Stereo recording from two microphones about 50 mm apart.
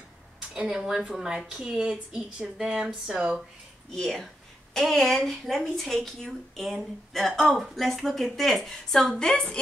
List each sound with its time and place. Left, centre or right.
0.4 s speech: centre
3.9 s a woman's voice: centre